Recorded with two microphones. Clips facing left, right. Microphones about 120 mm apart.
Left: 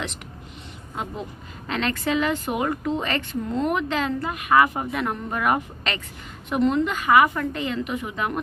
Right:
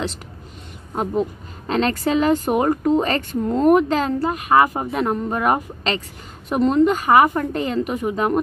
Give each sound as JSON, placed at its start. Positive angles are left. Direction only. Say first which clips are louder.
{"t": 1.7, "sound": "speech", "louder": "right 5 dB", "side_deg": -35}